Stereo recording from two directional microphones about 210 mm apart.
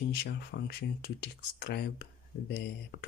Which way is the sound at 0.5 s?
55° left (ahead or behind).